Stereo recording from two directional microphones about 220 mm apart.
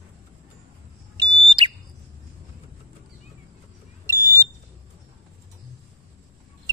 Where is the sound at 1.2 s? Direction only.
20° right (ahead or behind).